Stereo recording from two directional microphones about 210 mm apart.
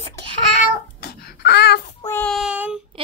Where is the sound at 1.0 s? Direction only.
50° left (ahead or behind).